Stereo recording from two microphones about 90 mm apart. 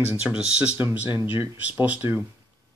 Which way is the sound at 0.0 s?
15° right (ahead or behind).